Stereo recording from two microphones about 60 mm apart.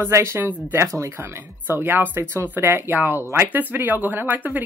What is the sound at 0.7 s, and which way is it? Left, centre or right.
Speech, right.